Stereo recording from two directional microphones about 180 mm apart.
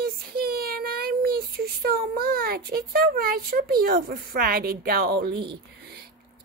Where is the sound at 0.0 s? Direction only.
55° right (ahead or behind).